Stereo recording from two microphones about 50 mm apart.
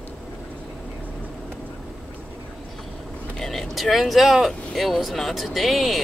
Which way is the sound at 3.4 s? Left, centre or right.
Centre.